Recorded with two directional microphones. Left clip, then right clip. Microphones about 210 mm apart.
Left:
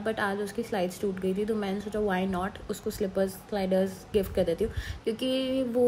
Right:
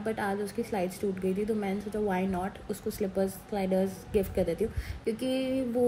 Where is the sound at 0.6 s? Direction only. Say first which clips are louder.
Left 2 dB; 15° left (ahead or behind).